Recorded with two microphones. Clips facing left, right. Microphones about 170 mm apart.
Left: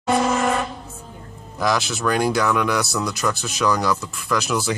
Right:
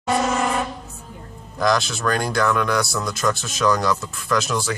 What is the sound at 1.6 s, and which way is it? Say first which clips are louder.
Speech: right 1 dB; 5° left (ahead or behind).